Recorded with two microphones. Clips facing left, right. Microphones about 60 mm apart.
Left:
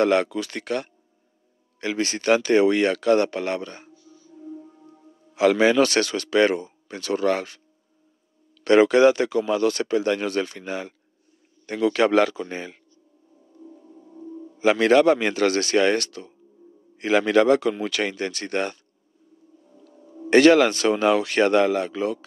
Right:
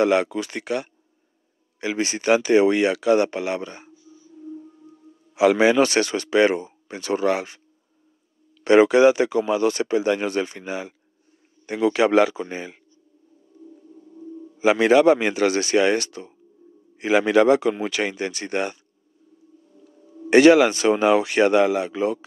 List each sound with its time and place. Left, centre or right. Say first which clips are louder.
0.0 s speech: right 1 dB; centre
3.3 s music: right 1 dB; centre
4.4 s music: right 1 dB; centre
5.3 s speech: right 1 dB; centre
8.6 s speech: right 1 dB; centre
13.6 s music: even; left
14.6 s speech: right 1 dB; centre
19.9 s music: left 1 dB; left
20.2 s speech: right 2 dB; centre